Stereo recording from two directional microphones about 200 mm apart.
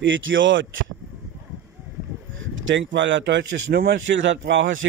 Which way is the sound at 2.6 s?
65° right (ahead or behind).